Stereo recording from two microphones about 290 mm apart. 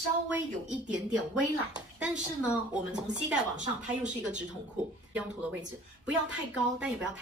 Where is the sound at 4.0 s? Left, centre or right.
Centre.